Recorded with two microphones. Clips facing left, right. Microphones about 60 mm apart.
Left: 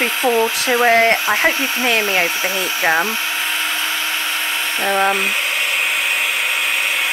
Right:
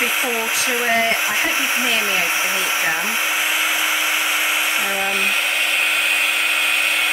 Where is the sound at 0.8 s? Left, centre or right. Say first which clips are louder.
Left 7 dB; left.